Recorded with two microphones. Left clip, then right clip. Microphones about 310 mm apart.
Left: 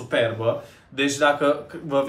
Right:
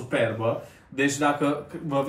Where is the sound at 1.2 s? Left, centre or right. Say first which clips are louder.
Left 9 dB; centre.